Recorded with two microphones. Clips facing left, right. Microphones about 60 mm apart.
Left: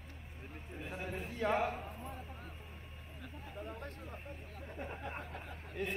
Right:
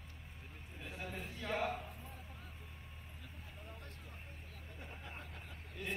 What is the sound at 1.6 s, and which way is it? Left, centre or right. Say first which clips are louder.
Clip-clop: left 2 dB; left.